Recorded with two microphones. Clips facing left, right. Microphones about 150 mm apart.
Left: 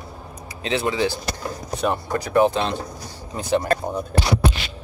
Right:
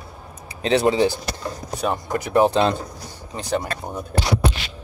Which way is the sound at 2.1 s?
20° right (ahead or behind).